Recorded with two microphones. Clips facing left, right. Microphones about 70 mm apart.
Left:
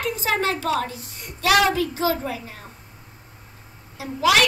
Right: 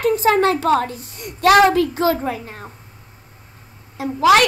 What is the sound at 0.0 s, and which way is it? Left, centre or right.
A woman's voice, right.